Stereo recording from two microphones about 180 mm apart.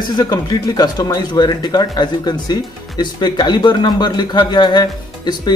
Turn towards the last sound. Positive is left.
turn(degrees=25)  # may be behind; listen again after turning